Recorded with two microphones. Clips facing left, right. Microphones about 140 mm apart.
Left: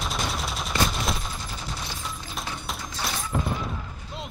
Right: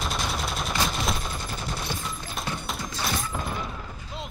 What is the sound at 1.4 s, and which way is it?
Fusillade, 55° right (ahead or behind).